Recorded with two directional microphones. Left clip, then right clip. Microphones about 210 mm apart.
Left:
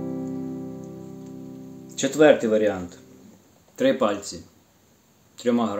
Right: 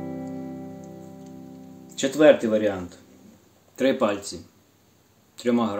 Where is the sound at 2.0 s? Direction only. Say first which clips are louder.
Even; 10° left (ahead or behind).